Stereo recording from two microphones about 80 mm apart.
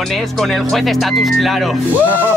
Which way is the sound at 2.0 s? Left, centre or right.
Right.